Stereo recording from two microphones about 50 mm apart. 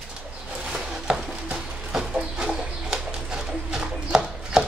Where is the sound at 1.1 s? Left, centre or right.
Centre.